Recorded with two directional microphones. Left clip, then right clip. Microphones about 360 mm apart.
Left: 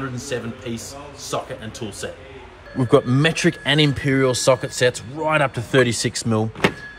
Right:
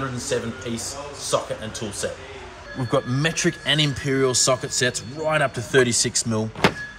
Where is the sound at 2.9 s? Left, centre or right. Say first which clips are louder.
Left 6 dB; left.